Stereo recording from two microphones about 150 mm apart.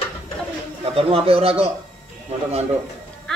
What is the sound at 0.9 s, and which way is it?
Speech, 40° right (ahead or behind).